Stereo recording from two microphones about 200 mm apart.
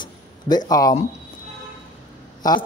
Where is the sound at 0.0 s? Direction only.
20° left (ahead or behind).